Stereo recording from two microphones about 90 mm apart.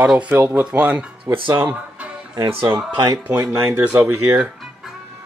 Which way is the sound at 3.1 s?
15° right (ahead or behind).